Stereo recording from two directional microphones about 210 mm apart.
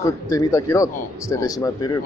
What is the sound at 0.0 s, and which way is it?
Speech, 15° left (ahead or behind).